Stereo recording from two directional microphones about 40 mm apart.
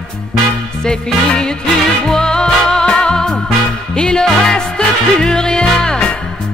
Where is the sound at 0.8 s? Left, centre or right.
Centre.